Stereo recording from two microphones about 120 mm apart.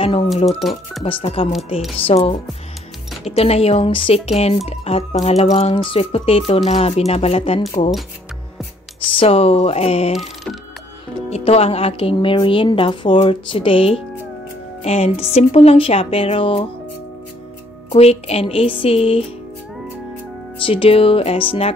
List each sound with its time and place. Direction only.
0.0 s speech: 50° left (ahead or behind)
9.2 s speech: 55° left (ahead or behind)
10.1 s music: centre (ahead or behind)
11.2 s speech: 60° left (ahead or behind)
17.9 s speech: 55° left (ahead or behind)
20.5 s speech: 45° left (ahead or behind)